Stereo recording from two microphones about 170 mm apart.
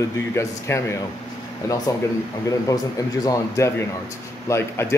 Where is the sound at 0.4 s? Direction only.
15° left (ahead or behind).